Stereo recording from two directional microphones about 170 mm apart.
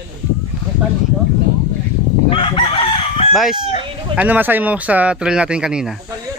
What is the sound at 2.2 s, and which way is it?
Chicken, 30° left (ahead or behind).